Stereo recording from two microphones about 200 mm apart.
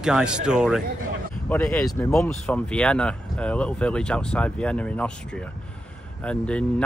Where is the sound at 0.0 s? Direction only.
5° right (ahead or behind).